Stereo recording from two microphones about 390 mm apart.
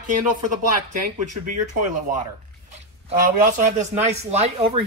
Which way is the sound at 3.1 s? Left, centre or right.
Right.